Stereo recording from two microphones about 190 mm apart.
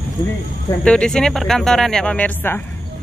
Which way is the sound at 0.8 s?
5° left (ahead or behind).